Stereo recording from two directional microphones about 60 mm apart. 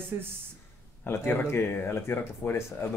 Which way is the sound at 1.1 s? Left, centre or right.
Left.